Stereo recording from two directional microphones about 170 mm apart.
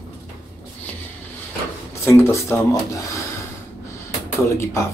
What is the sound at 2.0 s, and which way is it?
Speech, 15° left (ahead or behind).